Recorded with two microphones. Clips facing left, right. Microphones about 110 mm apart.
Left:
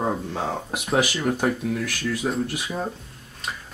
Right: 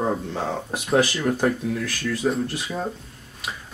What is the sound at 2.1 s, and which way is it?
Speech, centre (ahead or behind).